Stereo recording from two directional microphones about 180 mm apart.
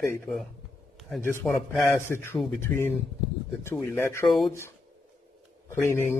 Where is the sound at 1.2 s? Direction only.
10° left (ahead or behind).